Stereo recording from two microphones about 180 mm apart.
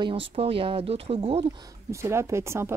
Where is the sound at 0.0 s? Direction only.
30° right (ahead or behind).